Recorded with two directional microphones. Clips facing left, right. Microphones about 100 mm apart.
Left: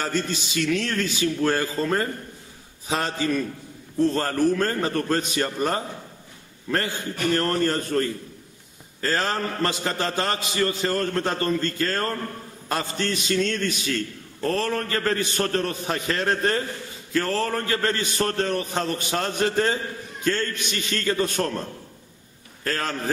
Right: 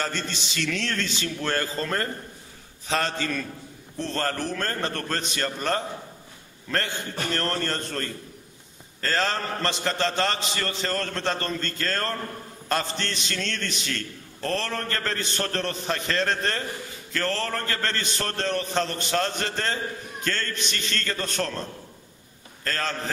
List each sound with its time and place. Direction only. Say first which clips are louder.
0.0 s a man's voice: left 4 dB; 10° left (ahead or behind)